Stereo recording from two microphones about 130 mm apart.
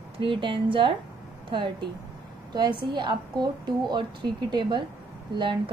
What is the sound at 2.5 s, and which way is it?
A woman's voice, 35° right (ahead or behind).